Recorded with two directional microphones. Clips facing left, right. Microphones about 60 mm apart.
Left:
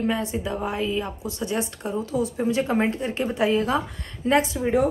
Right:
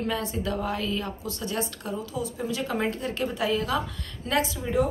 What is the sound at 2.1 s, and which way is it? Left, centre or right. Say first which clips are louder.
A woman's voice: left 9 dB; left.